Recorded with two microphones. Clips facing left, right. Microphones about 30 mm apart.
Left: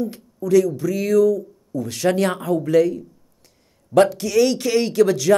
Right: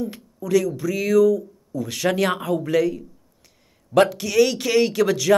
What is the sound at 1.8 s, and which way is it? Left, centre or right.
Speech, right.